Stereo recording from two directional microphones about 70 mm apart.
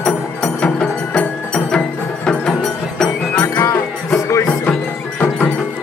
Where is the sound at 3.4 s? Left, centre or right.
Left.